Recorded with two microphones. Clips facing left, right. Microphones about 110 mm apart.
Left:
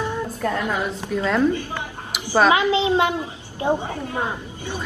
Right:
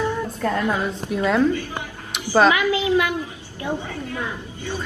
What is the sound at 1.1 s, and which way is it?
Speech, 10° right (ahead or behind).